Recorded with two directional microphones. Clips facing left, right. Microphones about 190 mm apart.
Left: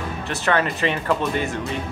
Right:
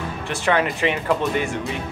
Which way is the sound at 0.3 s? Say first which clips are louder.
Right 1 dB; 15° right (ahead or behind).